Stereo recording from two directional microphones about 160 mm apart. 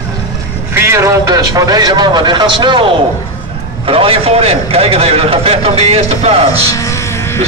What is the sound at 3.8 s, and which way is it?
A man's voice, 35° right (ahead or behind).